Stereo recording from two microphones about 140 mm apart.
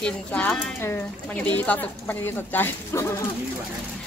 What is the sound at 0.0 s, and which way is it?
Speech, 5° left (ahead or behind).